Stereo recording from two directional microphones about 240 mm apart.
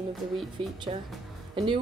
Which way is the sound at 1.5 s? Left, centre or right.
Centre.